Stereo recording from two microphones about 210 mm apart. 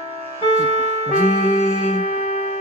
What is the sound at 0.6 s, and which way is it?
Music, 30° right (ahead or behind).